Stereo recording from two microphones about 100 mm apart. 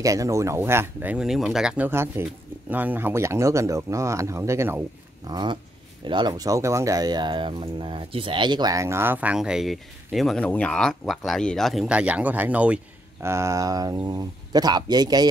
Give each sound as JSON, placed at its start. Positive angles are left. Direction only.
{"t": 0.0, "sound": "speech", "side_deg": -35}
{"t": 1.1, "sound": "speech", "side_deg": -5}
{"t": 1.9, "sound": "speech", "side_deg": -25}
{"t": 5.2, "sound": "speech", "side_deg": -45}
{"t": 8.8, "sound": "speech", "side_deg": -25}
{"t": 9.4, "sound": "speech", "side_deg": -5}
{"t": 10.4, "sound": "speech", "side_deg": 10}
{"t": 11.9, "sound": "speech", "side_deg": -15}
{"t": 13.2, "sound": "a sound", "side_deg": -30}
{"t": 14.0, "sound": "speech", "side_deg": -40}